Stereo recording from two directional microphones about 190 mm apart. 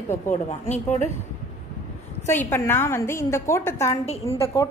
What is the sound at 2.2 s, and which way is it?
A woman's voice, 15° left (ahead or behind).